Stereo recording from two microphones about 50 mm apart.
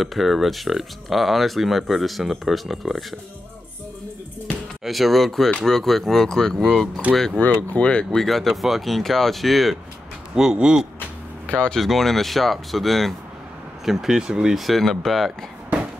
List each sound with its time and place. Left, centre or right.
0.0 s speech: centre
4.8 s speech: centre
7.3 s speech: left
8.2 s speech: centre
10.3 s speech: centre
11.4 s speech: left
11.7 s speech: centre
13.8 s speech: centre